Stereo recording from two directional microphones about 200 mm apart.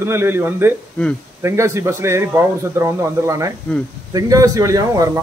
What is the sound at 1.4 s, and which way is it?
A man's voice, 15° right (ahead or behind).